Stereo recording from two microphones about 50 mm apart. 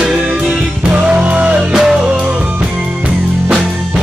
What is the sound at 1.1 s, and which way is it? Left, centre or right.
Music, right.